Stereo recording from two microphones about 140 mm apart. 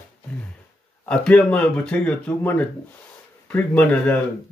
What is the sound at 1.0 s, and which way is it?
Speech, 5° left (ahead or behind).